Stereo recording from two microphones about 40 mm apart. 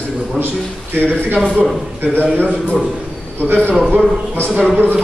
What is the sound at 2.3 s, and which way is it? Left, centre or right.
Speech, left.